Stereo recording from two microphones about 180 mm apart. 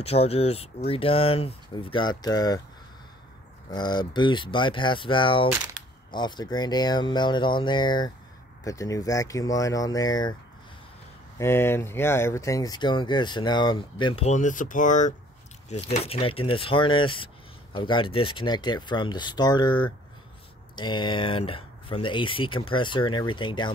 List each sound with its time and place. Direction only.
0.0 s speech: 35° left (ahead or behind)
3.7 s speech: 25° left (ahead or behind)
11.3 s speech: 15° left (ahead or behind)